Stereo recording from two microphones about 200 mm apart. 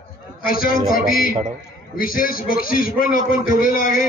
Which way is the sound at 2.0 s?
45° left (ahead or behind).